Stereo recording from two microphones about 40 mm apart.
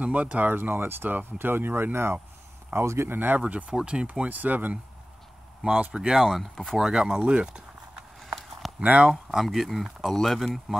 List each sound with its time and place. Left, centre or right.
0.0 s speech: right
0.5 s speech: right
2.7 s speech: right
3.4 s speech: right
4.3 s speech: right
5.7 s speech: right
6.1 s speech: centre
6.9 s speech: centre
7.2 s speech: right
8.6 s a sound: centre
9.1 s speech: centre
10.4 s speech: centre